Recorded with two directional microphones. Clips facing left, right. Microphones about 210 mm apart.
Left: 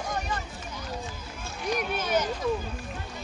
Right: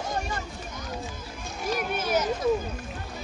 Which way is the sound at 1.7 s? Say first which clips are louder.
Right 1 dB; 5° right (ahead or behind).